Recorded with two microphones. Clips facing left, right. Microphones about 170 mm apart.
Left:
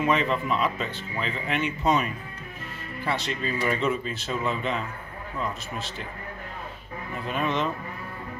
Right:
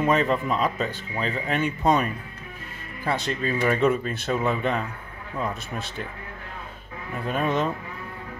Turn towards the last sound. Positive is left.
turn(degrees=-45)  # may be behind; listen again after turning